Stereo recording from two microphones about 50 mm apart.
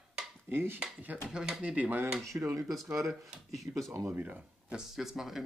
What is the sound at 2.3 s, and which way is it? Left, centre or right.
Speech, right.